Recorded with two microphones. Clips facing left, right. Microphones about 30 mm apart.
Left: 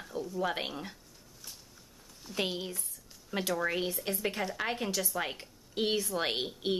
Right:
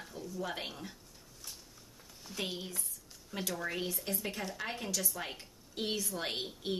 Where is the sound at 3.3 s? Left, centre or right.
Left.